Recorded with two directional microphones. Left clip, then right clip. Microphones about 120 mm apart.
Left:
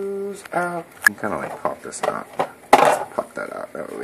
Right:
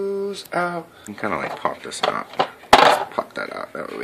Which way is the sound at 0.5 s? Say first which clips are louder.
Even; 5° right (ahead or behind).